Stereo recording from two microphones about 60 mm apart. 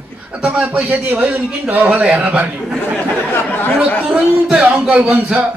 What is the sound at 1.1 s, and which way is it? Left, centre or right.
A man's voice, right.